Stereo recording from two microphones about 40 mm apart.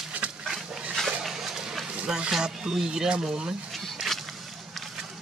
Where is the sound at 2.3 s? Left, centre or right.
Centre.